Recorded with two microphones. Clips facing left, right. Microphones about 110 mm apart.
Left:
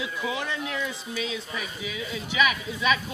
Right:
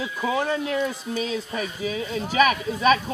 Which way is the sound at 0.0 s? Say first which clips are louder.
Right 5 dB; 40° right (ahead or behind).